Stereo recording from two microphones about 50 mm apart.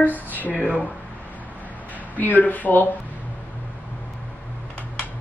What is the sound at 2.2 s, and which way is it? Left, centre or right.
Speech, left.